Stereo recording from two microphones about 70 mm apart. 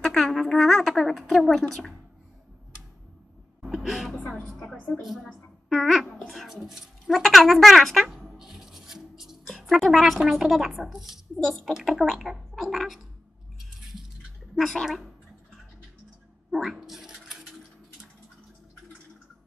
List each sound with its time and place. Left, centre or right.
0.0 s speech: centre
3.6 s music: centre
5.0 s a woman's voice: centre
6.0 s speech: centre
6.3 s speech: centre
7.5 s writing: centre
9.5 s speech: centre
14.5 s speech: centre
16.4 s a sound: centre